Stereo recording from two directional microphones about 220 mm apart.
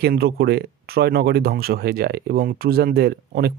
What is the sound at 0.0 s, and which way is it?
Speech, 45° right (ahead or behind).